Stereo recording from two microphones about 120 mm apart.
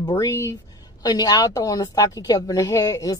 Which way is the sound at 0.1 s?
25° left (ahead or behind).